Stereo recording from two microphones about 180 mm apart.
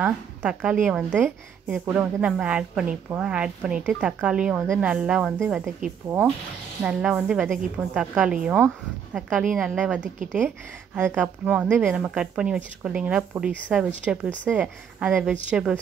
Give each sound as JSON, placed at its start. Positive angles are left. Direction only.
{"t": 0.0, "sound": "a woman's voice", "side_deg": -5}